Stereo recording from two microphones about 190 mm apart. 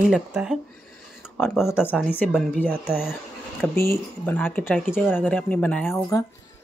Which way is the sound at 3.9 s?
10° left (ahead or behind).